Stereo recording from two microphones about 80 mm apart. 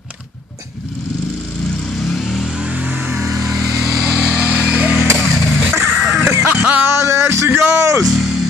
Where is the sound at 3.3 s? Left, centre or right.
Right.